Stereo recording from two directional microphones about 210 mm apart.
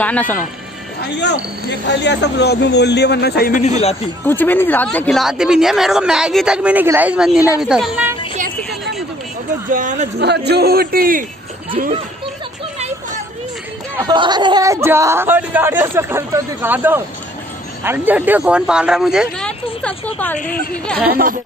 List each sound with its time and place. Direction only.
0.0 s speech: 5° left (ahead or behind)
1.9 s speech: 55° left (ahead or behind)
4.2 s a woman's voice: 10° left (ahead or behind); by 8.2 s 5° right (ahead or behind)
9.7 s speech: 40° right (ahead or behind)
10.1 s a man's voice: 50° right (ahead or behind)
13.9 s speech: 20° right (ahead or behind); by 20.3 s 5° left (ahead or behind)
20.3 s a woman's voice: 40° left (ahead or behind)
21.1 s a man's voice: 45° right (ahead or behind)